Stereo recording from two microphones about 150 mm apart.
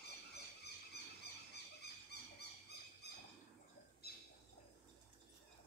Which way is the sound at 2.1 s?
90° left.